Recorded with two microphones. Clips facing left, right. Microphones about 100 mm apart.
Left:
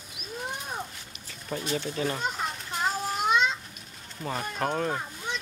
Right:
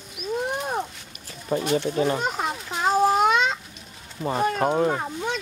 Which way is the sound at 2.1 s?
65° right (ahead or behind).